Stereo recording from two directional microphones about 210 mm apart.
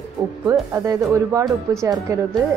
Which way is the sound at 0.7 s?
15° right (ahead or behind).